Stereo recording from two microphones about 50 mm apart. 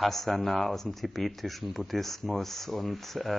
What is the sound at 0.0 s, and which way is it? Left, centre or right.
Speech, centre.